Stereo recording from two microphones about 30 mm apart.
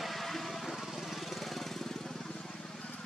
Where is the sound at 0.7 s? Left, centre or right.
Centre.